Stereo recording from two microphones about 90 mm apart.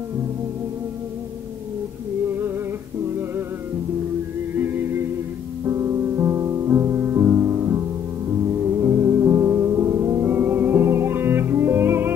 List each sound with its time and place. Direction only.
4.6 s music: 25° right (ahead or behind)
5.7 s music: 35° right (ahead or behind)